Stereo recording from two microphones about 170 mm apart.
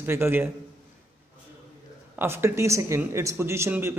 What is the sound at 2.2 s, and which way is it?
Speech, 15° right (ahead or behind).